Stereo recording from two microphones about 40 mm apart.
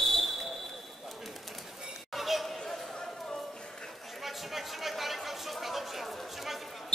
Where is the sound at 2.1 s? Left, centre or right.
Centre.